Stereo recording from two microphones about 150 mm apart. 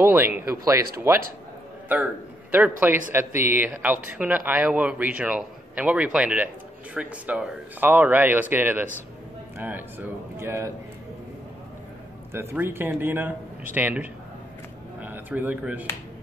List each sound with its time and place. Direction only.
0.0 s speech: 15° right (ahead or behind)
2.8 s speech: 15° right (ahead or behind)
12.3 s speech: 15° right (ahead or behind)